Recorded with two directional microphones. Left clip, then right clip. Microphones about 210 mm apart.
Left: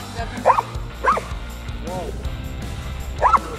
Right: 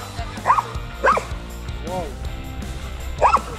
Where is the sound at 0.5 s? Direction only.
25° left (ahead or behind).